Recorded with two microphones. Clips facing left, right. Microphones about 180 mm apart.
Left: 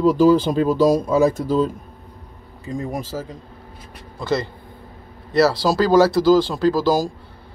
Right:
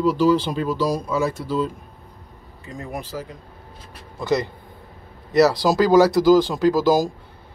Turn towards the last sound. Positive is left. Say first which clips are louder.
# right 1 dB
turn(degrees=-15)  # may be behind; listen again after turning